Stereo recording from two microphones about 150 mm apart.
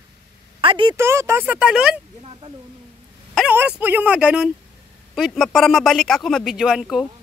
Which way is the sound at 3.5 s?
10° right (ahead or behind).